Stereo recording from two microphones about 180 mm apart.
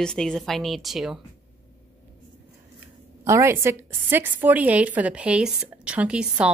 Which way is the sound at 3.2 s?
15° right (ahead or behind).